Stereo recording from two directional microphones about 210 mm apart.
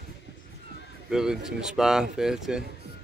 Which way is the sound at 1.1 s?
Centre (ahead or behind).